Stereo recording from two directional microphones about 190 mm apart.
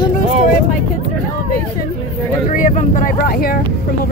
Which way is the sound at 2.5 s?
40° left (ahead or behind).